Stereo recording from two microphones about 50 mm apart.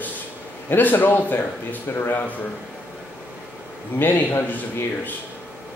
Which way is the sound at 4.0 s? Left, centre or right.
Left.